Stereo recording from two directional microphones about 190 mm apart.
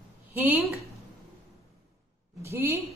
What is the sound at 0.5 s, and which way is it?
Speech, 15° right (ahead or behind).